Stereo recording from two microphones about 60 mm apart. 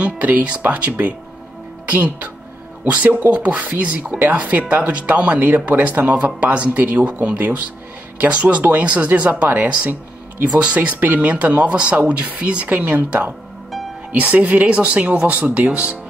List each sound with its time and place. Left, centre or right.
0.0 s speech: right